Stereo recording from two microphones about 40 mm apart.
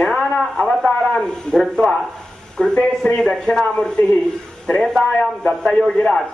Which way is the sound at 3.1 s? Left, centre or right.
Centre.